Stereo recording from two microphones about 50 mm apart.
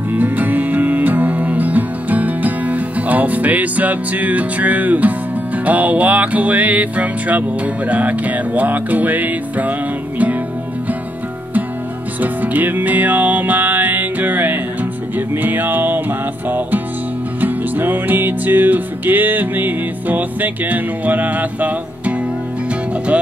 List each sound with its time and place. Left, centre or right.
0.1 s music: right
12.2 s music: right